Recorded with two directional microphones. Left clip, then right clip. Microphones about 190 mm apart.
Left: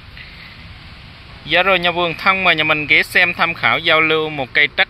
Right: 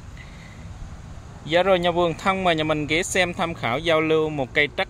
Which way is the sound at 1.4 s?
5° right (ahead or behind).